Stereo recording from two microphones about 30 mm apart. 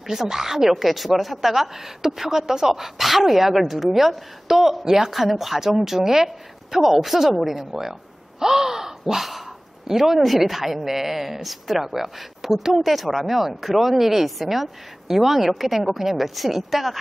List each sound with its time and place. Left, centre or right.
0.0 s speech: centre
8.4 s crow: centre
9.8 s speech: centre